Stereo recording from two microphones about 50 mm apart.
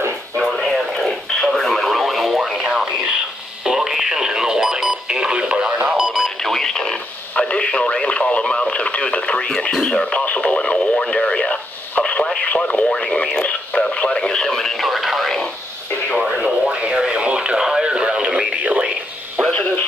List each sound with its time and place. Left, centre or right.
0.4 s radio: centre
2.6 s radio: centre
3.6 s radio: centre
6.4 s radio: centre
10.2 s radio: left; by 16.5 s centre
16.6 s radio: centre